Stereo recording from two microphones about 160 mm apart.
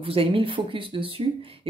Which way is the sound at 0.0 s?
35° right (ahead or behind).